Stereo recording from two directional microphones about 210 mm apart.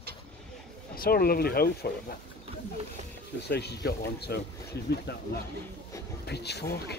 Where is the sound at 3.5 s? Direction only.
50° left (ahead or behind).